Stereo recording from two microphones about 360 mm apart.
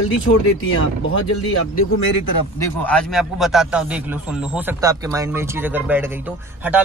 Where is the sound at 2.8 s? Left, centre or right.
Centre.